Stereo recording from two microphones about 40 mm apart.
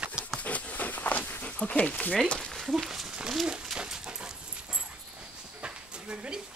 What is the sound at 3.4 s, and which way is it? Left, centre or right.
Dog, centre.